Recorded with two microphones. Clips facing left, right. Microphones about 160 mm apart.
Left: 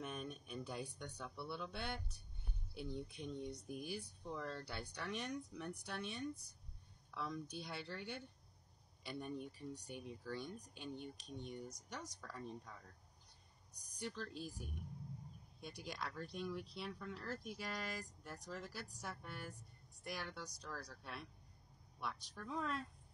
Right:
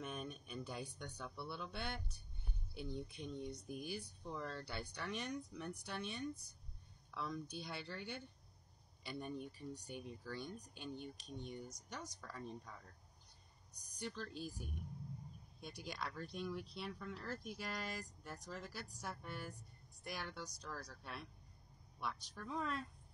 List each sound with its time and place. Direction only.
0.0 s speech: centre (ahead or behind)
13.7 s a woman's voice: centre (ahead or behind)